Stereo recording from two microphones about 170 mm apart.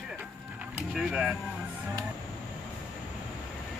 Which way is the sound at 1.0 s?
5° right (ahead or behind).